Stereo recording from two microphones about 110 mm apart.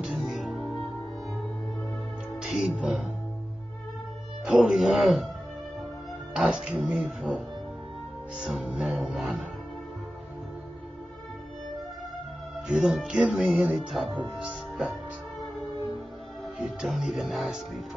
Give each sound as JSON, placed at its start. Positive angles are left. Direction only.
{"t": 0.0, "sound": "music", "side_deg": -5}
{"t": 2.4, "sound": "speech", "side_deg": -5}
{"t": 4.5, "sound": "music", "side_deg": -5}
{"t": 6.3, "sound": "speech", "side_deg": -10}
{"t": 8.6, "sound": "music", "side_deg": 0}
{"t": 12.6, "sound": "speech", "side_deg": -10}
{"t": 16.8, "sound": "music", "side_deg": 0}